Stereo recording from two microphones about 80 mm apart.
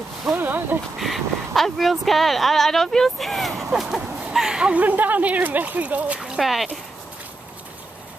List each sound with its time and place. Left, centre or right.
0.4 s a sound: right
0.9 s speech: centre
6.2 s speech: centre